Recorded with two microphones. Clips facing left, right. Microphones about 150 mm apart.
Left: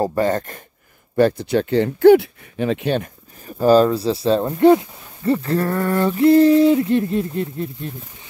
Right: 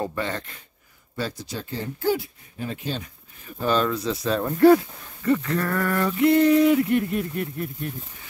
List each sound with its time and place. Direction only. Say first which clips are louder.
0.0 s speech: left 9 dB; 40° left (ahead or behind)
1.1 s speech: left 15 dB; 60° left (ahead or behind)
3.4 s speech: left 9 dB; 40° left (ahead or behind)